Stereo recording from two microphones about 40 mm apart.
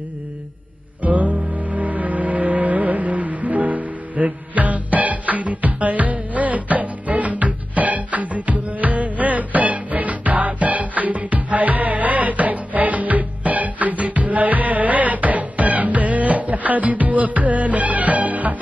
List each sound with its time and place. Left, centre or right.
1.0 s music: right